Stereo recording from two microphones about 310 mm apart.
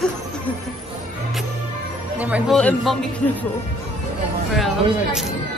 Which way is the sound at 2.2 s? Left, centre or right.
Centre.